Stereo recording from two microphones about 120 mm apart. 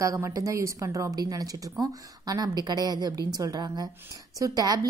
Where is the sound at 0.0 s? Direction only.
25° right (ahead or behind).